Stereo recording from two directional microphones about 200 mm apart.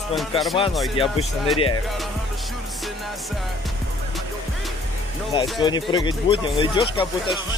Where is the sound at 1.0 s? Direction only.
Centre (ahead or behind).